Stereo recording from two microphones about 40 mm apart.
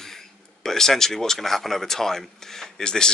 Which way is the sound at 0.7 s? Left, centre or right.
Centre.